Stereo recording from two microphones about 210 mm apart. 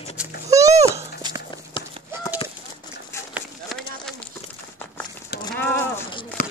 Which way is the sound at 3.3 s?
Centre (ahead or behind).